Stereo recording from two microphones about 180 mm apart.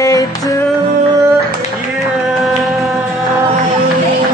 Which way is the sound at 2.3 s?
Centre (ahead or behind).